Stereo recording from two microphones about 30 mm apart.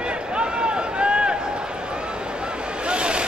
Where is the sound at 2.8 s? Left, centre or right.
Right.